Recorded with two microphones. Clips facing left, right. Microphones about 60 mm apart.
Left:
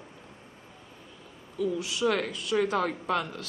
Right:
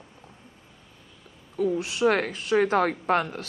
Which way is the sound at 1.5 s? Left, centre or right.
Right.